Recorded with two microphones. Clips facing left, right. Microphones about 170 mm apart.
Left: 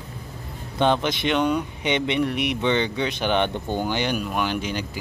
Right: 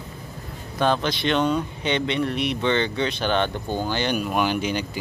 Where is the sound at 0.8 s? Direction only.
20° left (ahead or behind).